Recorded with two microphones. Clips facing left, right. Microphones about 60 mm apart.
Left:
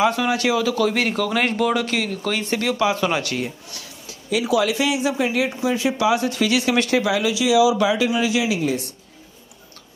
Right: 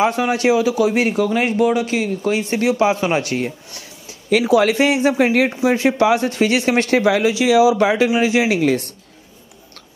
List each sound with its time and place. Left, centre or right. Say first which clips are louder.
0.0 s speech: right 3 dB; right; by 2.3 s centre
2.3 s speech: right 4 dB; right
8.5 s a woman's voice: right 6 dB; right